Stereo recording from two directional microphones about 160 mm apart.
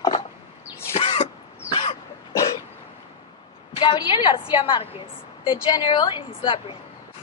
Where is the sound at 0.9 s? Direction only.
40° left (ahead or behind).